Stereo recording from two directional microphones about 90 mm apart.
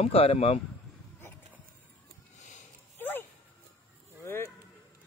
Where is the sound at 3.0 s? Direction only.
20° left (ahead or behind).